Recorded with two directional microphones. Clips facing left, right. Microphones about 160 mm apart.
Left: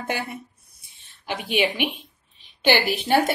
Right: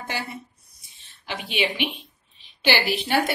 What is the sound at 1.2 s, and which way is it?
A woman's voice, 50° left (ahead or behind).